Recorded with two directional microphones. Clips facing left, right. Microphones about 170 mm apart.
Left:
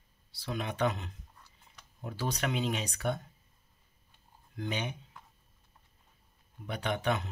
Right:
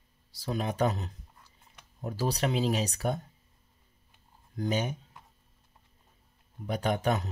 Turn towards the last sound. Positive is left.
turn(degrees=-40)  # may be behind; listen again after turning